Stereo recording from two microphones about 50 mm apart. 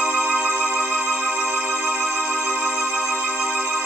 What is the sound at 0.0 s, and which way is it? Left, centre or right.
Music, right.